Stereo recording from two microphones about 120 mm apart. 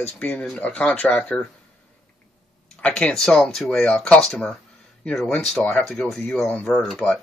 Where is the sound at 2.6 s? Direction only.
10° left (ahead or behind).